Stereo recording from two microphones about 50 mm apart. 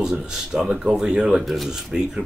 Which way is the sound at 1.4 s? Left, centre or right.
Centre.